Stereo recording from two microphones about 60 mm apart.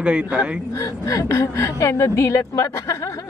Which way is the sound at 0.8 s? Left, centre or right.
Left.